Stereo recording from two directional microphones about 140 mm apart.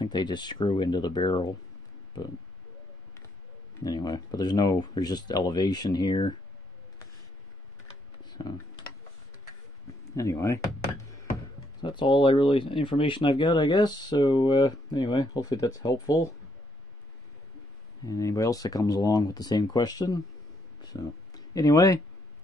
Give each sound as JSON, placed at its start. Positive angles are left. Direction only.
{"t": 0.0, "sound": "speech", "side_deg": 30}
{"t": 3.8, "sound": "speech", "side_deg": 30}
{"t": 8.3, "sound": "computer keyboard", "side_deg": 30}
{"t": 10.1, "sound": "speech", "side_deg": 20}
{"t": 11.8, "sound": "speech", "side_deg": 35}
{"t": 18.0, "sound": "speech", "side_deg": 25}